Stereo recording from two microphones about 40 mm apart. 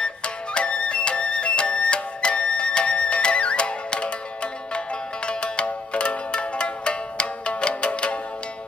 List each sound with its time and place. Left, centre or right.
0.0 s music: left